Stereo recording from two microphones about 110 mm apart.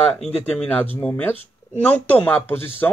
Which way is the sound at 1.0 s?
15° left (ahead or behind).